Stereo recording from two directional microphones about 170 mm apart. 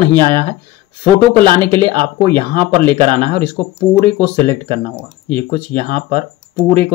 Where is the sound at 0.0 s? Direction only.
30° right (ahead or behind).